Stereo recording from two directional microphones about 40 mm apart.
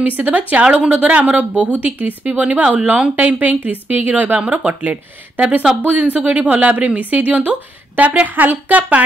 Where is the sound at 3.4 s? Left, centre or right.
Right.